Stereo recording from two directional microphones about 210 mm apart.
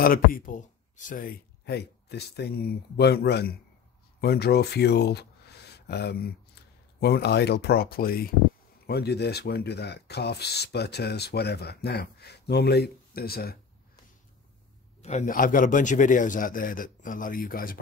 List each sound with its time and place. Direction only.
0.0 s speech: 40° left (ahead or behind)
15.0 s a man's voice: 35° left (ahead or behind)